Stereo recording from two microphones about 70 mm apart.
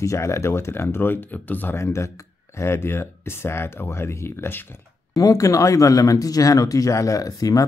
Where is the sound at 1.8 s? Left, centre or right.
Left.